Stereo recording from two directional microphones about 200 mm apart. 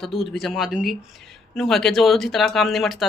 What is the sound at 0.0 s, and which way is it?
Speech, centre (ahead or behind).